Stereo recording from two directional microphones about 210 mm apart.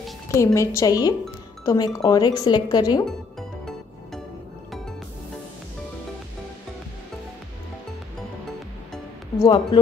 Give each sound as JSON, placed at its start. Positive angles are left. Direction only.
{"t": 0.4, "sound": "a woman's voice", "side_deg": 15}
{"t": 3.1, "sound": "music", "side_deg": 0}
{"t": 9.4, "sound": "speech", "side_deg": 20}